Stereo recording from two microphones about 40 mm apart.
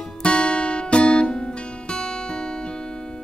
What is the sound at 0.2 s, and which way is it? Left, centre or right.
Music, left.